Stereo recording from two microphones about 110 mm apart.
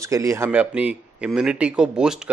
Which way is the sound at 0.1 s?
30° right (ahead or behind).